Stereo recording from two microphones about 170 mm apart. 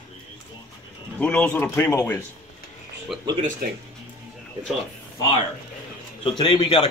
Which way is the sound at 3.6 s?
65° right (ahead or behind).